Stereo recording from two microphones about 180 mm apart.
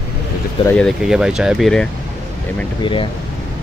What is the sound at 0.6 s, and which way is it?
Speech, 5° left (ahead or behind).